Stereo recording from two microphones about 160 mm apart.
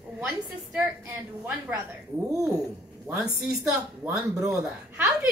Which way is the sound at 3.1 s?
5° right (ahead or behind).